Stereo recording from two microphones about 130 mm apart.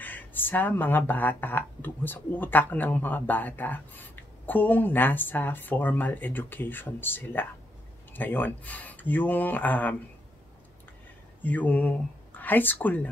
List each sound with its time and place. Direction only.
0.0 s speech: 15° left (ahead or behind)
11.4 s speech: 15° left (ahead or behind)